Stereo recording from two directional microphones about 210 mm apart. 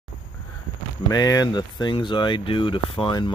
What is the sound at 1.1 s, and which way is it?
Speech, 20° left (ahead or behind).